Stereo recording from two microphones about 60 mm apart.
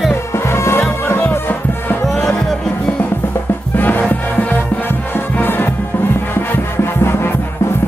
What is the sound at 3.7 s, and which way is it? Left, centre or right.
Music, left.